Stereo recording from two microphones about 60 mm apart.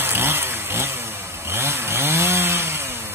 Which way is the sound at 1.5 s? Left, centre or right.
Right.